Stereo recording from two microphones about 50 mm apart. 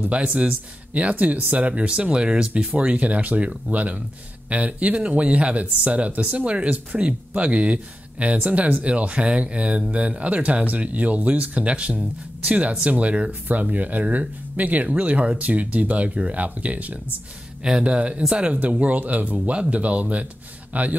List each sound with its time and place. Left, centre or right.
0.1 s speech: right
17.6 s a man's voice: centre